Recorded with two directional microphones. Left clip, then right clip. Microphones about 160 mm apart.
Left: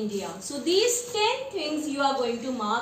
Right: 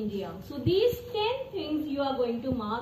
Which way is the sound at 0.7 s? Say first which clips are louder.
Left 2 dB; 30° left (ahead or behind).